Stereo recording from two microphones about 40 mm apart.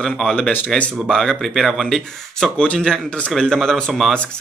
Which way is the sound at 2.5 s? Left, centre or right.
Left.